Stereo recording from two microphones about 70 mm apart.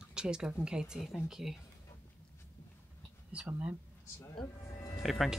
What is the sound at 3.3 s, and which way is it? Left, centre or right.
Speech, centre.